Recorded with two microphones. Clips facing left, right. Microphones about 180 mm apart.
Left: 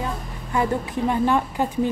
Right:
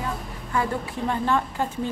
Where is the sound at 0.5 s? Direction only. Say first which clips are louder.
Left 4 dB; 15° left (ahead or behind).